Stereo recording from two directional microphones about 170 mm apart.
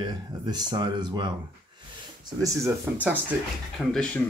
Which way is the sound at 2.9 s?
10° right (ahead or behind).